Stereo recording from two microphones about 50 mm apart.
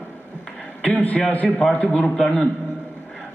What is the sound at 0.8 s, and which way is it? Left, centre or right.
A man's voice, left.